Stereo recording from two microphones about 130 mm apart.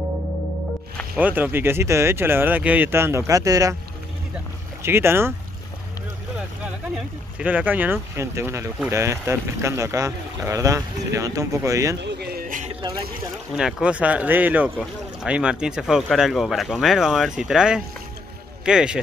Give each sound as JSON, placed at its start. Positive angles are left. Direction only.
{"t": 1.1, "sound": "speech", "side_deg": -15}
{"t": 4.8, "sound": "speech", "side_deg": -20}
{"t": 6.6, "sound": "speech", "side_deg": -10}
{"t": 12.4, "sound": "a sound", "side_deg": -85}
{"t": 13.6, "sound": "speech", "side_deg": -5}